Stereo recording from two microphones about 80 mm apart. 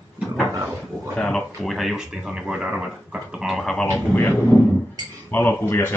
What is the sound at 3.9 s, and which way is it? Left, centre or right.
A man's voice, left.